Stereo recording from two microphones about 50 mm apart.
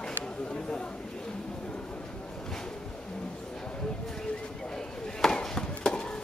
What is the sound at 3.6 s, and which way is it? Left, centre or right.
Chop, centre.